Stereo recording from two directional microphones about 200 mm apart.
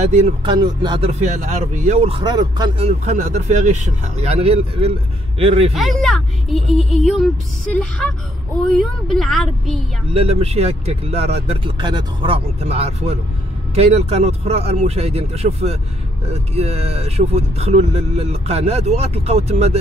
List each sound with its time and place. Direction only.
0.4 s speech: 25° right (ahead or behind)
1.2 s speech: 35° right (ahead or behind); by 2.9 s 20° right (ahead or behind)
3.1 s speech: 35° right (ahead or behind)
5.8 s speech: centre (ahead or behind)
10.1 s speech: 30° right (ahead or behind)